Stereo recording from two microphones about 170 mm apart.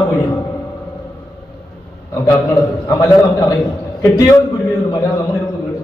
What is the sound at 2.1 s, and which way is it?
A man's voice, 15° left (ahead or behind).